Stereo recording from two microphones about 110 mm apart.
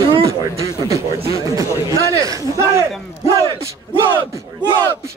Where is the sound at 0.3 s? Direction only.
30° right (ahead or behind).